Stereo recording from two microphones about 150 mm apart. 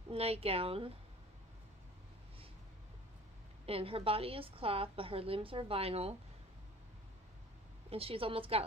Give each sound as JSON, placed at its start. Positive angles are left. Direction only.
{"t": 0.1, "sound": "a woman's voice", "side_deg": -40}
{"t": 3.6, "sound": "a woman's voice", "side_deg": -40}
{"t": 7.9, "sound": "a woman's voice", "side_deg": -40}